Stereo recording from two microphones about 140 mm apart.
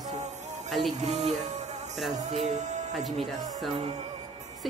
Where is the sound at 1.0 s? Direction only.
55° right (ahead or behind).